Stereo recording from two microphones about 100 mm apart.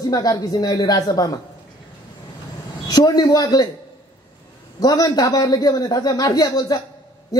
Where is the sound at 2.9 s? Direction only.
40° left (ahead or behind).